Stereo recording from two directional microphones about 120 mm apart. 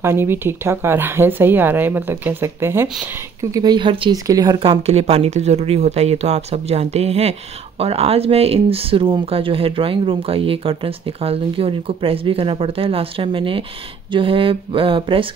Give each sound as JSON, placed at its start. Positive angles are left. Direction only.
{"t": 0.0, "sound": "speech", "side_deg": -20}
{"t": 3.3, "sound": "speech", "side_deg": -30}
{"t": 4.1, "sound": "speech", "side_deg": -35}
{"t": 4.6, "sound": "speech", "side_deg": -55}